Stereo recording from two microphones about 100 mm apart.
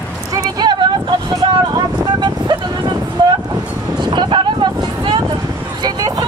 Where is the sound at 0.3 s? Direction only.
40° right (ahead or behind).